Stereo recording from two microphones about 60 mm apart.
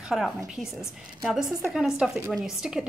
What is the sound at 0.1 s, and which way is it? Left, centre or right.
Speech, centre.